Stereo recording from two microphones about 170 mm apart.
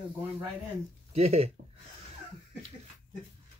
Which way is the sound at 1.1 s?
35° right (ahead or behind).